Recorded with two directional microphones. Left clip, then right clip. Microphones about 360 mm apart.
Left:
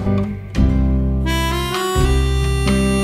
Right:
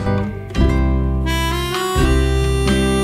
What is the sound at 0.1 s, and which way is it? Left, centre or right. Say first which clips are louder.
Music: right 1 dB; centre.